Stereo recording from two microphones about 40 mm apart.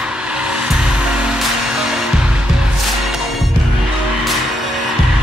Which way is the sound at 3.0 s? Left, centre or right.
Centre.